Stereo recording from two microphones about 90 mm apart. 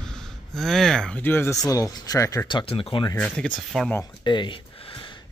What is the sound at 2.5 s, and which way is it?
Speech, 85° left.